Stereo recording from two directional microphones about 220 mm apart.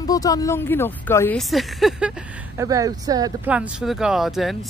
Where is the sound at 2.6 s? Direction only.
15° right (ahead or behind).